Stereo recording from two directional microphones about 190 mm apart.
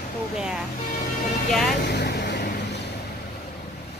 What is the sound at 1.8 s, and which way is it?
Vehicle, 65° left (ahead or behind).